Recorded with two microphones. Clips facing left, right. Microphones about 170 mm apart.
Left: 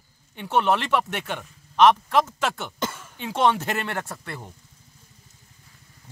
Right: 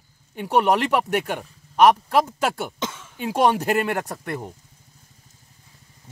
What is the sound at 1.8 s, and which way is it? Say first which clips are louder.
Speech: right 1 dB; 10° right (ahead or behind).